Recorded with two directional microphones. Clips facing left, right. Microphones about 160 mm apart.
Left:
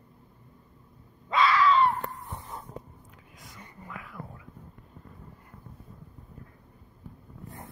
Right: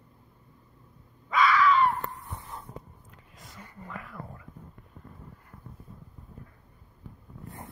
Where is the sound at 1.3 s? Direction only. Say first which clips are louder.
Even; 30° left (ahead or behind).